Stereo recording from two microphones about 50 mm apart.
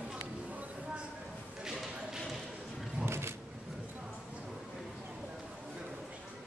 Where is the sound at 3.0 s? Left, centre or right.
Right.